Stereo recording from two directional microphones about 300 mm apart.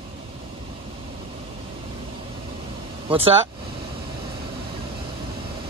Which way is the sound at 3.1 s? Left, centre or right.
Centre.